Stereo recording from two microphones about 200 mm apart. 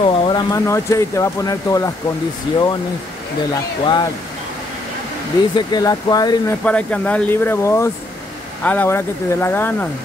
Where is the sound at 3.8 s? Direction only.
20° left (ahead or behind).